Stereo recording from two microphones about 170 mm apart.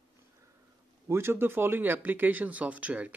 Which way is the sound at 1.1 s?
15° right (ahead or behind).